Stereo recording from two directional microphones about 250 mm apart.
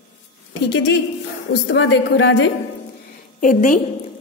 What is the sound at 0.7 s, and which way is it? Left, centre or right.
A woman's voice, left.